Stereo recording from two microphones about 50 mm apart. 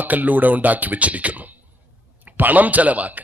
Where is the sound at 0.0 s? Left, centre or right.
Right.